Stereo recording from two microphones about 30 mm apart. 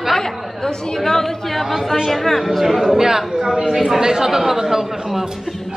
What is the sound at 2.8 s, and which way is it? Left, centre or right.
Speech, centre.